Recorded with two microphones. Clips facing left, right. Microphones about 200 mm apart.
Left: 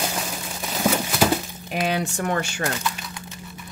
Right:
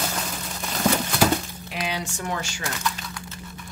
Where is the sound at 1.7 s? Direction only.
50° left (ahead or behind).